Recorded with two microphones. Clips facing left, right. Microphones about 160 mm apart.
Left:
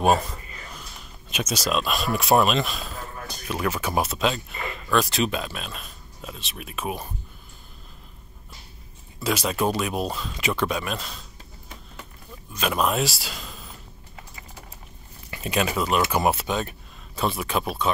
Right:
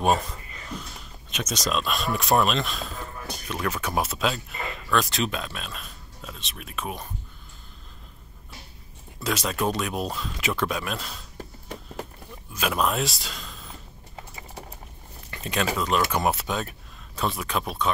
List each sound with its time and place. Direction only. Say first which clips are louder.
1.3 s speech: left 2 dB; 5° left (ahead or behind)
9.2 s speech: left 2 dB; centre (ahead or behind)
11.3 s a sound: right 7 dB; 45° right (ahead or behind)
12.5 s speech: left 2 dB; centre (ahead or behind)
15.3 s speech: left 2 dB; 10° left (ahead or behind)